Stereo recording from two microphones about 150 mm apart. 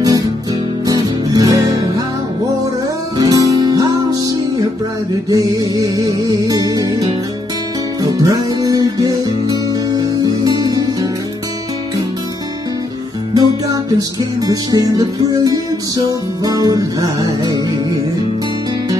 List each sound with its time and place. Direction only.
0.8 s music: 25° right (ahead or behind)
3.2 s music: 25° right (ahead or behind)
5.3 s music: 25° right (ahead or behind)
13.3 s music: 25° right (ahead or behind)